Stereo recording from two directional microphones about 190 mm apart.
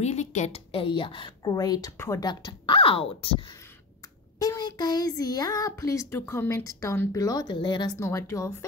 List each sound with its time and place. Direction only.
0.0 s a woman's voice: 35° left (ahead or behind); by 8.5 s 15° left (ahead or behind)